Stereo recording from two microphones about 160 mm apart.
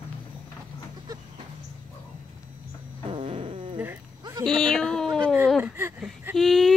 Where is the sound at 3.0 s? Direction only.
40° right (ahead or behind).